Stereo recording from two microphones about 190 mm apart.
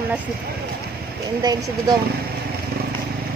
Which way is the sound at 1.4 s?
20° right (ahead or behind).